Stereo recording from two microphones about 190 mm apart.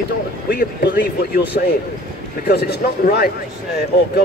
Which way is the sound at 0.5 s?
50° left (ahead or behind).